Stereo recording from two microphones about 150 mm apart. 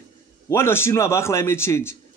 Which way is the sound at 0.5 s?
15° left (ahead or behind).